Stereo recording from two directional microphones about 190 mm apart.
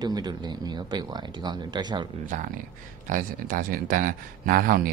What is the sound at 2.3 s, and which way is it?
Speech, 40° right (ahead or behind).